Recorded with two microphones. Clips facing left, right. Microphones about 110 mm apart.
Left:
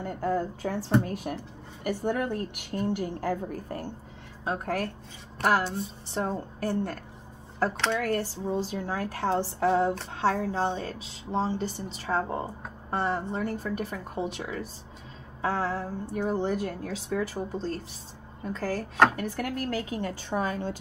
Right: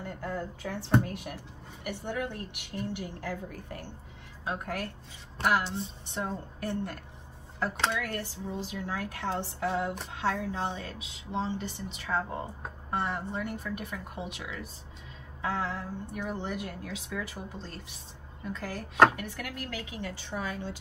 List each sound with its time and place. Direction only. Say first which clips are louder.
0.0 s a woman's voice: left 7 dB; 40° left (ahead or behind)